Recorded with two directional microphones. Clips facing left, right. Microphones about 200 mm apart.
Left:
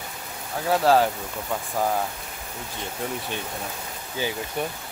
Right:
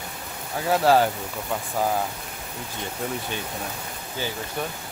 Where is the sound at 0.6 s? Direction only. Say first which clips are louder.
Even; centre (ahead or behind).